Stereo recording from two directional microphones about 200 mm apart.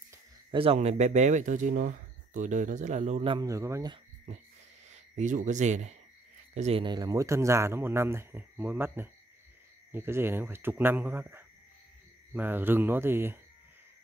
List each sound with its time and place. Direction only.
0.1 s a sound: 25° right (ahead or behind)
0.7 s speech: 35° right (ahead or behind)
3.3 s speech: 15° right (ahead or behind)
4.3 s speech: 30° right (ahead or behind); by 13.4 s 10° right (ahead or behind)